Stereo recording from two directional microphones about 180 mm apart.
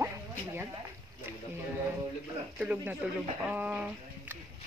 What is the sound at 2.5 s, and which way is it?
Speech, 5° right (ahead or behind).